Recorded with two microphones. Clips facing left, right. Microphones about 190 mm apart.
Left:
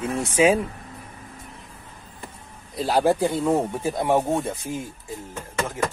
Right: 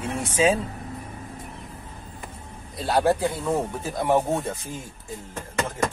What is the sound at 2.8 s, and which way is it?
Speech, 10° left (ahead or behind).